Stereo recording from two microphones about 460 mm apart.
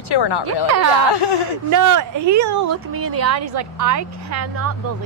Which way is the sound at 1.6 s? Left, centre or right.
Right.